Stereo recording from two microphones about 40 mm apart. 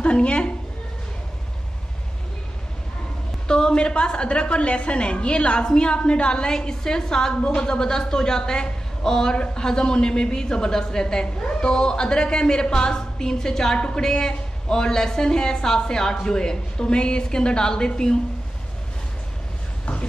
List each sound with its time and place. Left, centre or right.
0.0 s a woman's voice: left
3.4 s a woman's voice: centre